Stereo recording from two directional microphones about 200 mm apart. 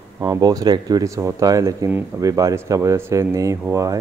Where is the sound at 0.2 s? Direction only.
15° right (ahead or behind).